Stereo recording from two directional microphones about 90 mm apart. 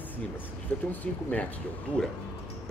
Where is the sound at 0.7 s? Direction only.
20° left (ahead or behind).